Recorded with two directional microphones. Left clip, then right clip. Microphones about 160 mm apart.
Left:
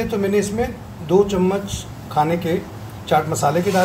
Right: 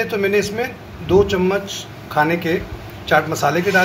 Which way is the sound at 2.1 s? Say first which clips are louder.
Right 2 dB; 15° left (ahead or behind).